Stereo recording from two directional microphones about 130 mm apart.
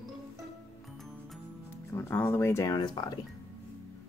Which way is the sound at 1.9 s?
20° left (ahead or behind).